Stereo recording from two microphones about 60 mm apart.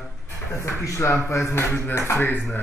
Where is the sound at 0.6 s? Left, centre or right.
Left.